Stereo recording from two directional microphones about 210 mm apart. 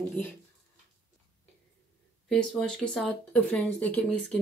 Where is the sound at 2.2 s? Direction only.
5° left (ahead or behind).